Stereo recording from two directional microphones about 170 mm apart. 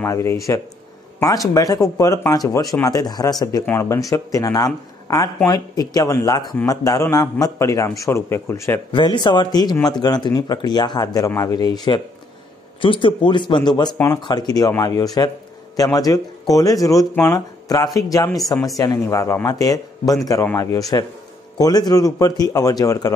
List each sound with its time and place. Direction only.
0.0 s speech: 15° left (ahead or behind)
8.9 s speech: 25° left (ahead or behind)